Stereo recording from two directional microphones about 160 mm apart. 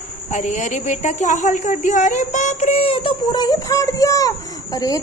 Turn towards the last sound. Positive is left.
turn(degrees=20)  # may be behind; listen again after turning